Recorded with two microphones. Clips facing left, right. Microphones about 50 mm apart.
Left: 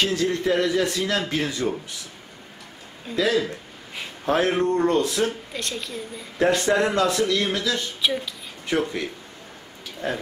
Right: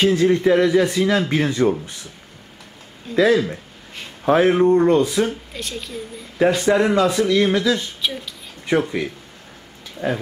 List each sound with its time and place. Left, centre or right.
0.0 s a man's voice: right
3.2 s speech: right
4.3 s speech: centre
5.5 s a man's voice: centre; by 7.8 s right
8.0 s speech: centre
8.7 s speech: centre